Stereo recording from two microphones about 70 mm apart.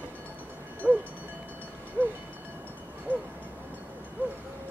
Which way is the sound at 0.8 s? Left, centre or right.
Right.